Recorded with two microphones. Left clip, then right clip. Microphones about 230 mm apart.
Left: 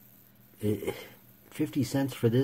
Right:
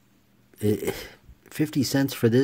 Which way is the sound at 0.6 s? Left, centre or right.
Right.